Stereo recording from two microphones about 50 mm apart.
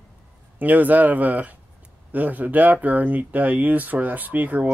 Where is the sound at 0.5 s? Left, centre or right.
Right.